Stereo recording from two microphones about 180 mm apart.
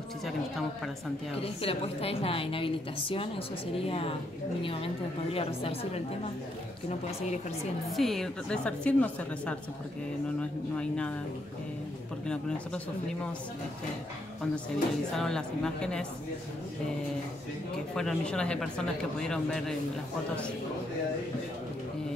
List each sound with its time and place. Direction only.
1.4 s a woman's voice: 30° left (ahead or behind)
7.9 s a woman's voice: centre (ahead or behind)
10.8 s a woman's voice: 5° left (ahead or behind)
12.3 s a woman's voice: 5° left (ahead or behind)
15.1 s a woman's voice: 5° left (ahead or behind)
17.9 s a woman's voice: 5° left (ahead or behind)